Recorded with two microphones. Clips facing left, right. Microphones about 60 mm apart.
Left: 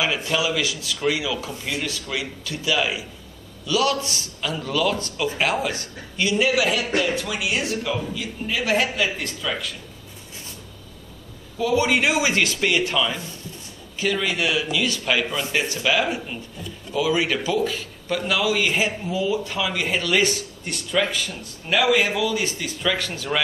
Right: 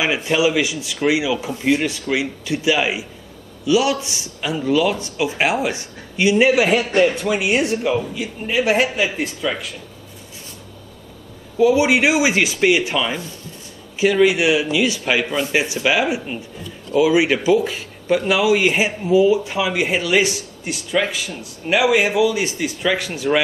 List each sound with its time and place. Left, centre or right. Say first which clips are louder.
0.0 s speech: right 5 dB; right
1.5 s speech: right 9 dB; right
6.3 s a man's voice: right 5 dB; right
11.5 s speech: right 6 dB; centre